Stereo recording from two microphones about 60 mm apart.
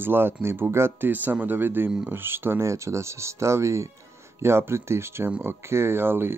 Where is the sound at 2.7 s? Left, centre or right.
Right.